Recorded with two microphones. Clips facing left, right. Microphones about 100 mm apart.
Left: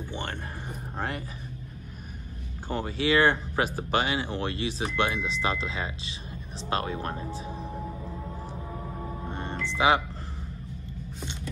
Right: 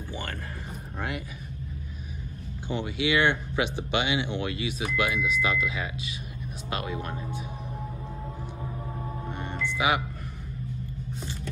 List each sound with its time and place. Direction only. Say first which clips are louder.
0.1 s speech: even; 25° left (ahead or behind)
0.9 s speech: left 1 dB; 35° left (ahead or behind)
2.7 s speech: left 1 dB; 35° left (ahead or behind)
9.3 s music: left 2 dB; 30° left (ahead or behind)
9.7 s speech: left 3 dB; 30° left (ahead or behind)